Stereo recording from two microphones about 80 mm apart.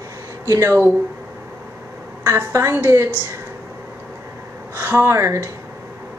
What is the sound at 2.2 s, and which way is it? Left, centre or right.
Speech, right.